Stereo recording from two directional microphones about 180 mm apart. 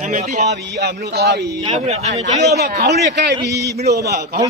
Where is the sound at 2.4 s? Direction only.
60° right (ahead or behind).